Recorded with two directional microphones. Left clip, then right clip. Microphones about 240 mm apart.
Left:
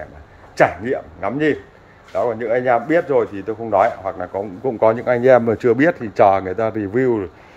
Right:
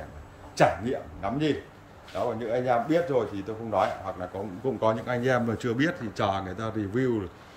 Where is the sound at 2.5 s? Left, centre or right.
Centre.